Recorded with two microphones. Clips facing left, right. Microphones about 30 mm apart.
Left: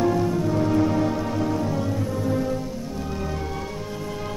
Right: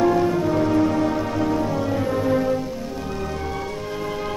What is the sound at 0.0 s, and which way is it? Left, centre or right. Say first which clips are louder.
Music: right 3 dB; centre.